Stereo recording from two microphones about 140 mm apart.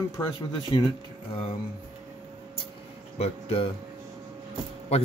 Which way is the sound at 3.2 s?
45° left (ahead or behind).